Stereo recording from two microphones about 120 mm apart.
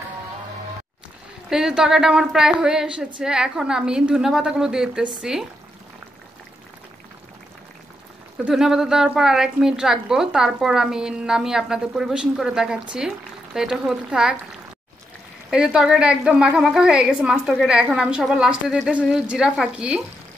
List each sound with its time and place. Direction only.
1.5 s a woman's voice: 5° right (ahead or behind)
8.5 s a woman's voice: 5° right (ahead or behind)
15.5 s a woman's voice: 5° right (ahead or behind)